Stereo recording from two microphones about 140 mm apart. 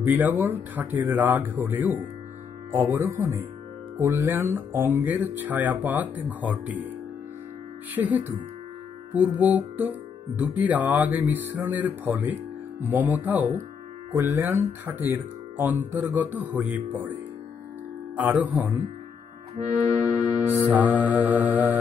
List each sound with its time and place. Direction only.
0.0 s speech: 15° right (ahead or behind)
7.9 s speech: 10° right (ahead or behind)
19.5 s accordion: 55° right (ahead or behind)
20.7 s speech: 10° right (ahead or behind)